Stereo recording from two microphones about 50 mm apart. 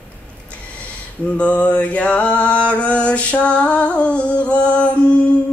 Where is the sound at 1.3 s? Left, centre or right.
Left.